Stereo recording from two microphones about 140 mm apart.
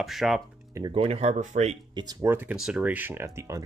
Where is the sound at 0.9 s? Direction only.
45° right (ahead or behind).